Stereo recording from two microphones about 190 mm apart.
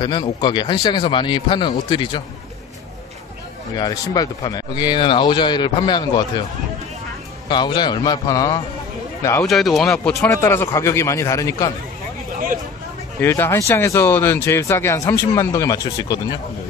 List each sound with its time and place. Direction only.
0.0 s speech: 20° left (ahead or behind)
3.7 s speech: 20° left (ahead or behind)
7.4 s speech: 25° left (ahead or behind)
9.4 s speech: centre (ahead or behind); by 11.7 s 15° left (ahead or behind)
13.2 s speech: 15° left (ahead or behind)